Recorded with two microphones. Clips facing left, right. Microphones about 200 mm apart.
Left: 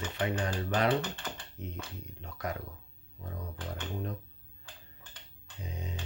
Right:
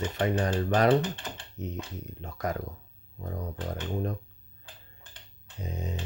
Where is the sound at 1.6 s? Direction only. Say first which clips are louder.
Right 7 dB; 40° right (ahead or behind).